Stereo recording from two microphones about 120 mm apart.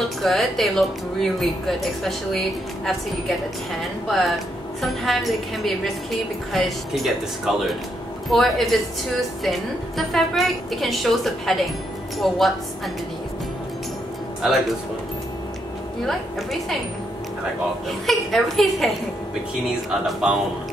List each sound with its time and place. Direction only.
0.2 s speech: centre (ahead or behind)
16.1 s speech: centre (ahead or behind)
17.8 s speech: centre (ahead or behind)
20.1 s speech: 5° right (ahead or behind)